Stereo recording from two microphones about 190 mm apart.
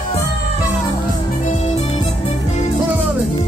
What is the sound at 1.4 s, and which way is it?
Music, 35° left (ahead or behind).